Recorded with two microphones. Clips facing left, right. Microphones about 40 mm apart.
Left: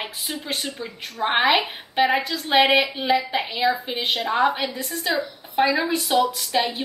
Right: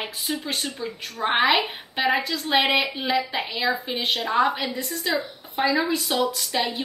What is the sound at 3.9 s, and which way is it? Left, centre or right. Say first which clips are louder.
Speech: left 1 dB; centre.